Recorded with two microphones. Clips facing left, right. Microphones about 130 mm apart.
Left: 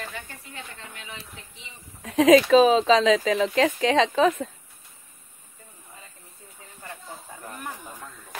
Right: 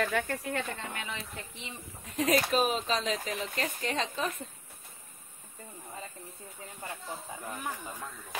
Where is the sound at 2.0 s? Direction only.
90° left.